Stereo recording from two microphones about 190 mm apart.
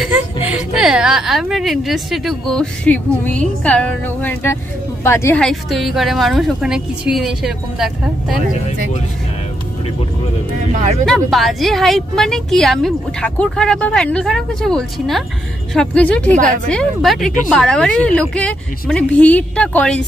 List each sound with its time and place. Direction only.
0.0 s a woman's voice: 5° right (ahead or behind)
10.7 s speech: 40° right (ahead or behind)
11.1 s a woman's voice: centre (ahead or behind)